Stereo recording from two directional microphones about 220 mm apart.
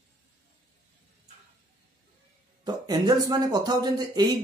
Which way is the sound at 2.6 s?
20° right (ahead or behind).